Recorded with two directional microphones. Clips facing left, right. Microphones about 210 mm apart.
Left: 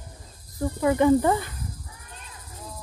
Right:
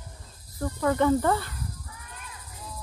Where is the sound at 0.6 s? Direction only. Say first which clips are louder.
Left 3 dB; 15° left (ahead or behind).